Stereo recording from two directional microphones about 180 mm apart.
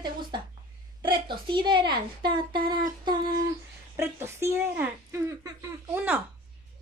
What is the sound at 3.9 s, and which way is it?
Speech, 15° right (ahead or behind).